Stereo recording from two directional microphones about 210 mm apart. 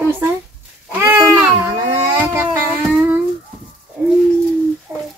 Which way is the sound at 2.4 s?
5° right (ahead or behind).